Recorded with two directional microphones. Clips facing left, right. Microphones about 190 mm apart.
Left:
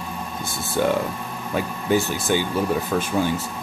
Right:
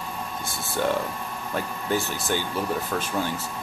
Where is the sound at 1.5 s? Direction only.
10° left (ahead or behind).